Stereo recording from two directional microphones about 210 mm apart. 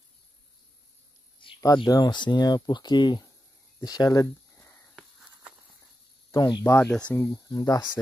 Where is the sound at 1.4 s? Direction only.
20° left (ahead or behind).